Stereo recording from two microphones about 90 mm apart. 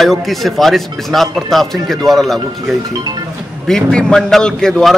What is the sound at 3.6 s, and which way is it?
A man's voice, 5° left (ahead or behind).